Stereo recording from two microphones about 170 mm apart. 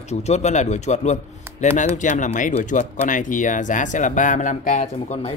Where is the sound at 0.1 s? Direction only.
40° left (ahead or behind).